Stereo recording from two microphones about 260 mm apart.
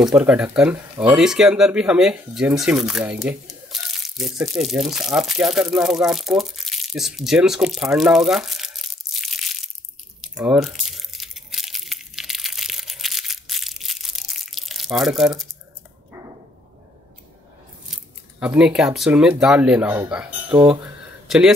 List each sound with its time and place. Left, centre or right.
0.0 s speech: centre
10.2 s crunch: centre
18.4 s speech: centre
20.5 s speech: centre
21.3 s speech: centre